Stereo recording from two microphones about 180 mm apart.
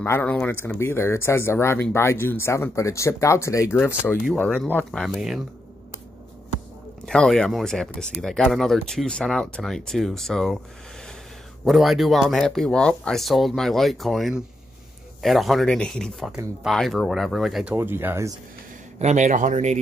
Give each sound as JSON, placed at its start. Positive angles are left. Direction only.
{"t": 0.0, "sound": "speech", "side_deg": 10}
{"t": 7.1, "sound": "speech", "side_deg": 5}
{"t": 11.6, "sound": "speech", "side_deg": 0}
{"t": 17.7, "sound": "speech", "side_deg": -10}
{"t": 18.9, "sound": "speech", "side_deg": -40}